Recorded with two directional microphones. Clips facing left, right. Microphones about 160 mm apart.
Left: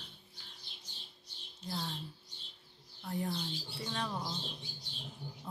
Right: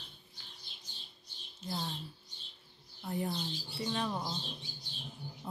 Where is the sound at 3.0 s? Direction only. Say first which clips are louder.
Right 1 dB; 10° right (ahead or behind).